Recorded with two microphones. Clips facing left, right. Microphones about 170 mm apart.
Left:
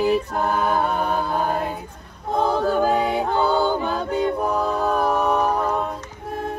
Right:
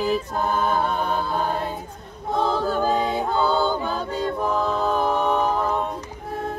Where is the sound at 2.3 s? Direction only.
15° left (ahead or behind).